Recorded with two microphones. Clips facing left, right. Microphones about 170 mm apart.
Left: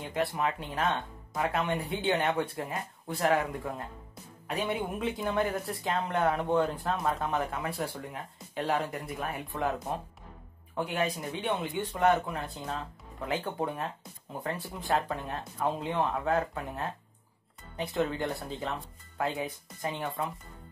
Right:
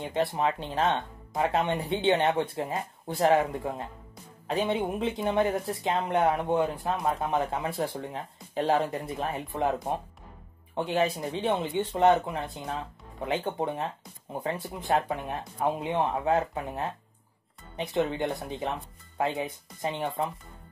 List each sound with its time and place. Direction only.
0.0 s speech: 20° right (ahead or behind)